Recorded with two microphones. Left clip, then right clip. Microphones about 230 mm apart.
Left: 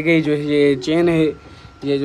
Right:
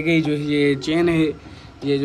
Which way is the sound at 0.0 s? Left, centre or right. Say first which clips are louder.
Left 3 dB; left.